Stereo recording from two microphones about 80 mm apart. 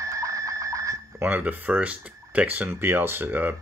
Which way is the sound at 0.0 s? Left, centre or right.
Right.